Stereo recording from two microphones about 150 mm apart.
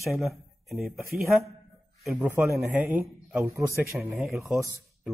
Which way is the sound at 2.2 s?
15° right (ahead or behind).